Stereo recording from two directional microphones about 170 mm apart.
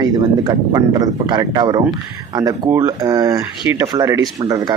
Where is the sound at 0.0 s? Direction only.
20° right (ahead or behind).